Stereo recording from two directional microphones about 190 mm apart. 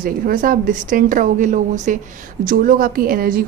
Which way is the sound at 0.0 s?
45° right (ahead or behind).